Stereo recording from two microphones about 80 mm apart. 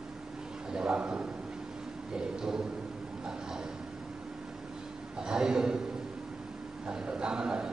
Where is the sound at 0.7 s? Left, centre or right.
Centre.